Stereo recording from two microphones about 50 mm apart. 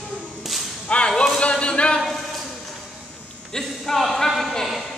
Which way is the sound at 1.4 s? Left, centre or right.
Left.